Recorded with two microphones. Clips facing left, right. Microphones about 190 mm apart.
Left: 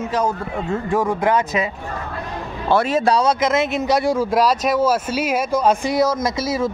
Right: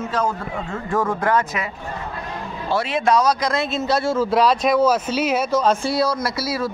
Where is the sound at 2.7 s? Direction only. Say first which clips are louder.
Left 2 dB; 45° left (ahead or behind).